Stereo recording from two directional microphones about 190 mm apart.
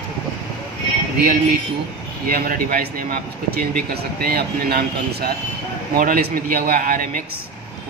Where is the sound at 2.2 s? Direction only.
50° right (ahead or behind).